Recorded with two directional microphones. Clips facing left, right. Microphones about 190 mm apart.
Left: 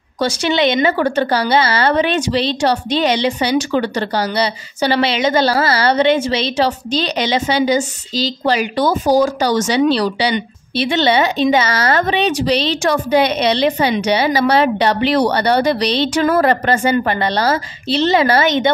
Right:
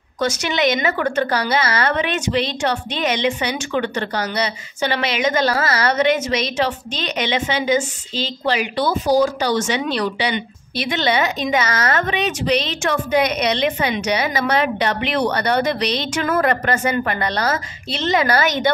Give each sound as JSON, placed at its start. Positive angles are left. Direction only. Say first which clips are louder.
{"t": 0.2, "sound": "a woman's voice", "louder": "left 4 dB", "side_deg": 30}